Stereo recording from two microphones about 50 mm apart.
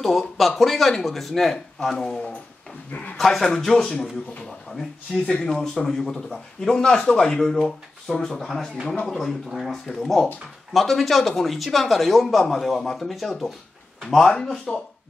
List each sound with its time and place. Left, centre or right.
0.4 s speech: centre
2.9 s speech: left
3.2 s speech: centre